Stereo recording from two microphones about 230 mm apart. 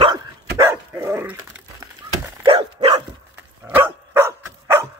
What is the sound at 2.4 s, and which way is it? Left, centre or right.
Dog, right.